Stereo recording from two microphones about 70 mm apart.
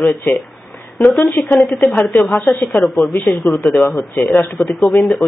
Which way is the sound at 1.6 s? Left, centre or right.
Left.